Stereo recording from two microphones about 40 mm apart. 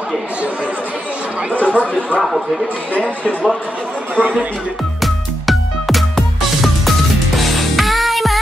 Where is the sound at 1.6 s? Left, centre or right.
Left.